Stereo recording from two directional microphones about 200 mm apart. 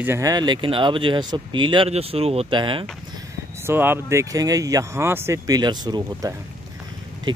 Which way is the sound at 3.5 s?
10° right (ahead or behind).